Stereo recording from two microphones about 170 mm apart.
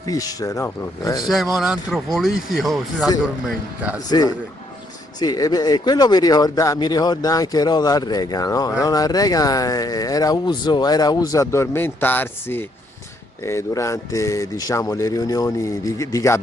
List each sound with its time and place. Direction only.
0.0 s speech: 20° left (ahead or behind)
1.3 s speech: centre (ahead or behind)
5.2 s speech: 20° left (ahead or behind)